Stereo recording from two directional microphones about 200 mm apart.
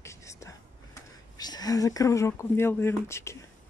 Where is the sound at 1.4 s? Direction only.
20° left (ahead or behind).